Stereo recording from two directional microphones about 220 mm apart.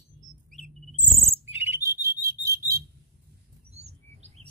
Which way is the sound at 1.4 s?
10° right (ahead or behind).